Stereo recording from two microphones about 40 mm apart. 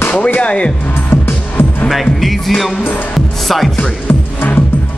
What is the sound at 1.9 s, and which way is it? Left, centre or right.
Music, centre.